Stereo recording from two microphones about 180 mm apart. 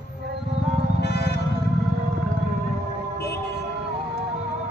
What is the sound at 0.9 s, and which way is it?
Music, 65° left (ahead or behind).